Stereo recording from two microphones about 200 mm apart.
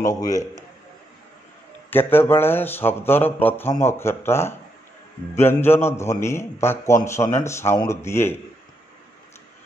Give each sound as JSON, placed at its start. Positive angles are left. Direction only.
{"t": 0.0, "sound": "speech", "side_deg": 15}
{"t": 1.9, "sound": "speech", "side_deg": 10}